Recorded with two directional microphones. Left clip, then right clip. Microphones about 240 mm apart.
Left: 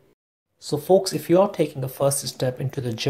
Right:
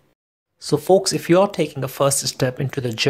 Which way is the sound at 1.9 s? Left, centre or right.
Right.